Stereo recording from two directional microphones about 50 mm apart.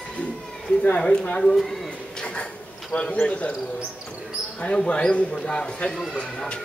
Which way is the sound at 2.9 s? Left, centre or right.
Left.